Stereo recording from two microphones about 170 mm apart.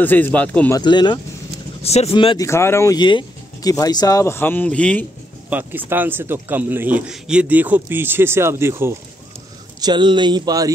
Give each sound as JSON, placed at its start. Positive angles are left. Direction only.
{"t": 0.0, "sound": "speech", "side_deg": 10}
{"t": 0.7, "sound": "speech", "side_deg": 25}
{"t": 1.8, "sound": "speech", "side_deg": 35}
{"t": 2.4, "sound": "speech", "side_deg": 15}
{"t": 5.5, "sound": "a man's voice", "side_deg": -10}
{"t": 9.8, "sound": "speech", "side_deg": -25}